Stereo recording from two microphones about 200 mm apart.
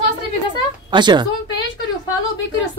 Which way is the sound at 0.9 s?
20° right (ahead or behind).